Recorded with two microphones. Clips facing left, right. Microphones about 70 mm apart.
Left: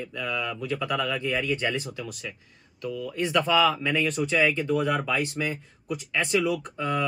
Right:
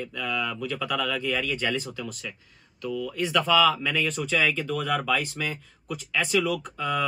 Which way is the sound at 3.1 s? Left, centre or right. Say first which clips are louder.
Even; left.